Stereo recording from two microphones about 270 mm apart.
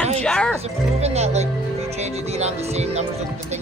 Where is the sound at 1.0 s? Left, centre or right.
Right.